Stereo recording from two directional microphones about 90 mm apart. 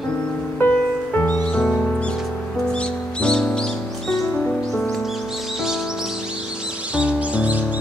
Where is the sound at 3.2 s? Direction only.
10° left (ahead or behind).